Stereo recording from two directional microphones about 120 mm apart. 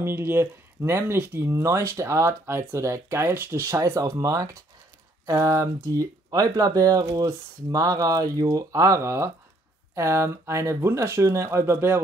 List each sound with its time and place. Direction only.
0.0 s speech: 15° right (ahead or behind)